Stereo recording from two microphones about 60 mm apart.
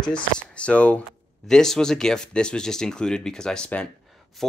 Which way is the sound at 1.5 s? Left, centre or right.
Centre.